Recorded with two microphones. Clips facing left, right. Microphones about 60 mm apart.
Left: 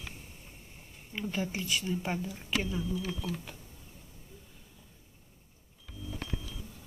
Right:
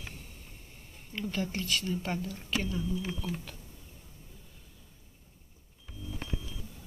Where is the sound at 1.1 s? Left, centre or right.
Centre.